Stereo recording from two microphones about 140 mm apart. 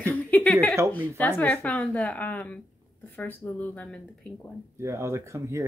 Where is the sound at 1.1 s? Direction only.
10° left (ahead or behind).